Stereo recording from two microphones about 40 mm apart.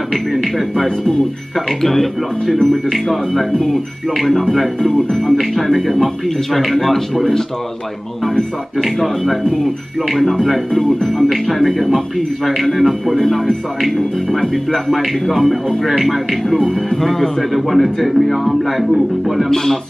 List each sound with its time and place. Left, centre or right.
0.1 s speech: centre
8.8 s speech: centre
10.7 s speech: centre